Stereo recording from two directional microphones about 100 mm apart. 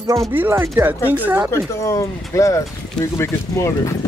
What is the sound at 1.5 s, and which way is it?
Speech, 30° left (ahead or behind).